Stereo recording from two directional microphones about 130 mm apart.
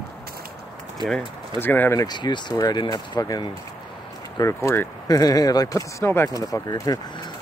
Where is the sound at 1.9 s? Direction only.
35° left (ahead or behind).